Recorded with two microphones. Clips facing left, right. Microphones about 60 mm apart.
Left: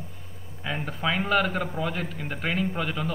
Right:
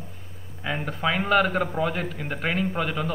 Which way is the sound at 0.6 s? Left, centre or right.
Centre.